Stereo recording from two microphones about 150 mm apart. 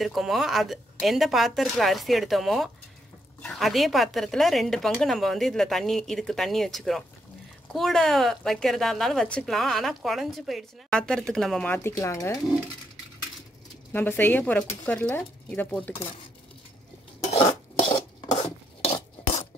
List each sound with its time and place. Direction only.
0.0 s a woman's voice: centre (ahead or behind)
11.7 s speech: 15° left (ahead or behind)
13.9 s speech: 15° left (ahead or behind)
17.7 s dishes: 35° left (ahead or behind)